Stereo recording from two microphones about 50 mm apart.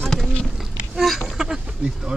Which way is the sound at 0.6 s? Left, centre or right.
Centre.